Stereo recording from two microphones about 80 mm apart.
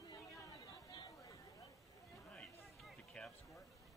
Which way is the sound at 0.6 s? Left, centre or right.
Left.